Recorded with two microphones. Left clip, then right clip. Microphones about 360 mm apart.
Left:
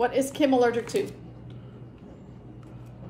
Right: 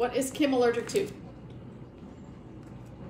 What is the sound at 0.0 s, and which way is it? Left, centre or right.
Speech, centre.